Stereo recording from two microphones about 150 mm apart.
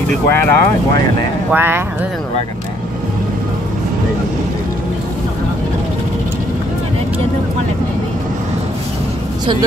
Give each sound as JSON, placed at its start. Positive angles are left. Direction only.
{"t": 0.3, "sound": "speech", "side_deg": 15}
{"t": 1.5, "sound": "speech", "side_deg": -15}